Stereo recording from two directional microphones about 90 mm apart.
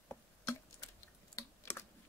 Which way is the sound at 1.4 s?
40° left (ahead or behind).